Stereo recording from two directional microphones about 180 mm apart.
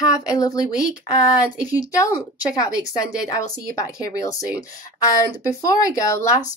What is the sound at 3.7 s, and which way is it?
Speech, 20° left (ahead or behind).